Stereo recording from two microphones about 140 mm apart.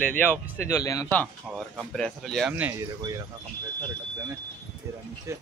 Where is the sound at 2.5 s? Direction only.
10° right (ahead or behind).